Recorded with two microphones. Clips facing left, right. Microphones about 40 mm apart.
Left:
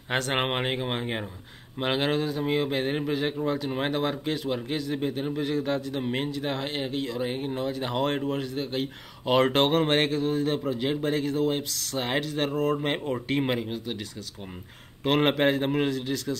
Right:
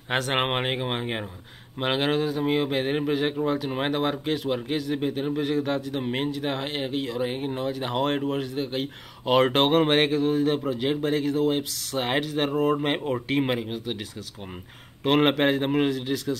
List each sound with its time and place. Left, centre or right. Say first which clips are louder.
0.1 s a man's voice: right 2 dB; centre
15.0 s a man's voice: right 2 dB; centre